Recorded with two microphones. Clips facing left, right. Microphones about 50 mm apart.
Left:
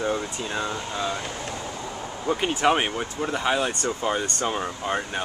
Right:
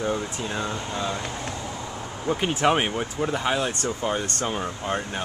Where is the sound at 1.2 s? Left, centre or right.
Right.